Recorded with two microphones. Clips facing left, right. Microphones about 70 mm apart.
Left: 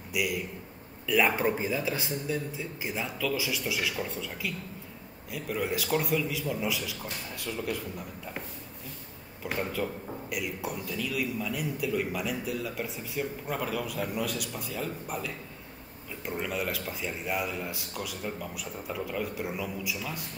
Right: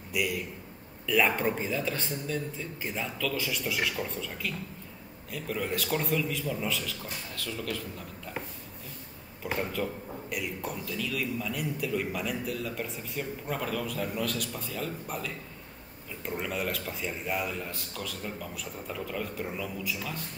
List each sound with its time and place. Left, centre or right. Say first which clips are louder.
0.1 s a man's voice: even; centre
9.4 s a man's voice: even; centre